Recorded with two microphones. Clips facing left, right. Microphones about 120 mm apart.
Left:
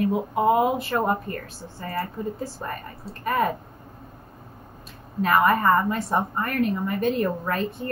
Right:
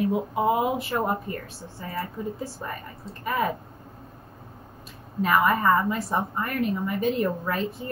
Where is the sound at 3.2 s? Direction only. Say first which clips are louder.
Left 3 dB; 50° left (ahead or behind).